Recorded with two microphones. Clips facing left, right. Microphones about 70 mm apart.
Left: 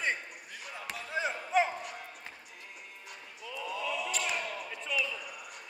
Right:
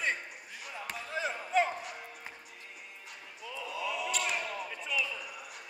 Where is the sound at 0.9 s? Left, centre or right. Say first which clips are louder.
Left 2 dB; centre.